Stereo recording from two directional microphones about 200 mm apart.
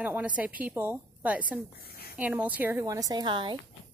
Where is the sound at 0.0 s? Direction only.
5° right (ahead or behind).